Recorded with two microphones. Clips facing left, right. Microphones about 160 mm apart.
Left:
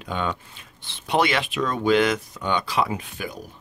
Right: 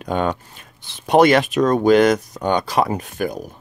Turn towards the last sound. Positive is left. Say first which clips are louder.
# right 8 dB
turn(degrees=-45)  # may be behind; listen again after turning